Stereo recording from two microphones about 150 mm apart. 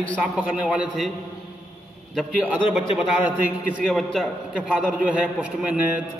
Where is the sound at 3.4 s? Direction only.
Centre (ahead or behind).